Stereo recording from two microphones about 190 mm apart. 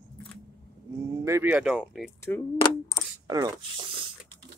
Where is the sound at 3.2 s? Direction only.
20° right (ahead or behind).